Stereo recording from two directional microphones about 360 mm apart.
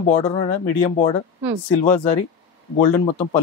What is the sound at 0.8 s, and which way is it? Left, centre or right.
Speech, centre.